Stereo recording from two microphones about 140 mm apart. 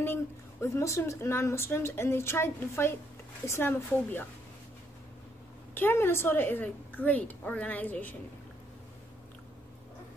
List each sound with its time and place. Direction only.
0.0 s a woman's voice: 15° left (ahead or behind)
5.8 s a woman's voice: 15° left (ahead or behind)